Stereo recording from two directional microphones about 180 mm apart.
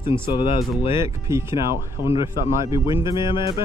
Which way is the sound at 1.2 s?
15° right (ahead or behind).